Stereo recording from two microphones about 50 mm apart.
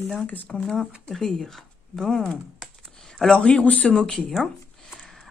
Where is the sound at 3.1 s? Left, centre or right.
Centre.